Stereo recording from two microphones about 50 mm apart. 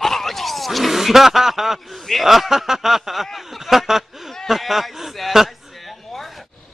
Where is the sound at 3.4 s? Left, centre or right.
Centre.